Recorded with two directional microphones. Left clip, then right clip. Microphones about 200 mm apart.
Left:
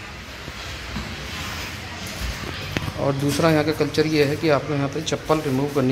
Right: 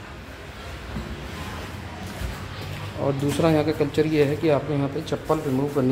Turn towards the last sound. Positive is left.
turn(degrees=5)  # may be behind; listen again after turning